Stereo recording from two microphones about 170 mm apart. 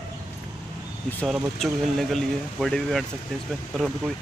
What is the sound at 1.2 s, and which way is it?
Speech, centre (ahead or behind).